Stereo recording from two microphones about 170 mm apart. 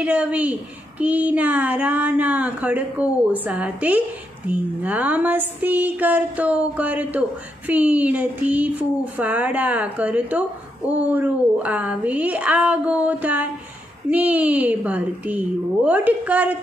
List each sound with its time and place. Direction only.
0.0 s speech: 5° right (ahead or behind)